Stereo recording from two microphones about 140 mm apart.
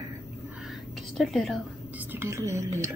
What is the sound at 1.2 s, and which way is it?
Speech, centre (ahead or behind).